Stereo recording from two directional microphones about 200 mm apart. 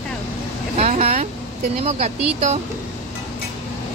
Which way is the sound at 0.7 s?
30° right (ahead or behind).